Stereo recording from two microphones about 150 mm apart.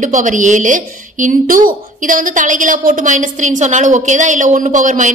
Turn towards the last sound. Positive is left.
turn(degrees=-60)  # may be behind; listen again after turning